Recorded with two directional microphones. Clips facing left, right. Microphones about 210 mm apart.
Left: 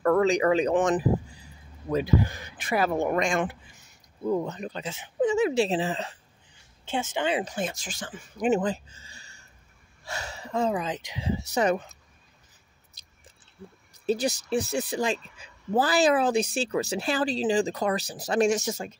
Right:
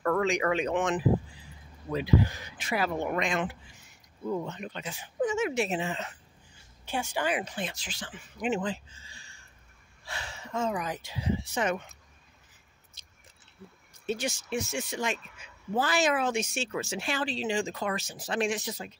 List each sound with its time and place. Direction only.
0.0 s speech: 35° left (ahead or behind)
4.9 s speech: 25° left (ahead or behind)
6.9 s a woman's voice: 20° left (ahead or behind)
7.4 s speech: 45° left (ahead or behind); by 11.3 s 20° left (ahead or behind)
11.5 s speech: 35° left (ahead or behind)
14.0 s speech: 35° left (ahead or behind)